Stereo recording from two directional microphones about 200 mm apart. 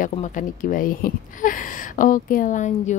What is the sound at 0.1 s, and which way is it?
A woman's voice, 40° left (ahead or behind).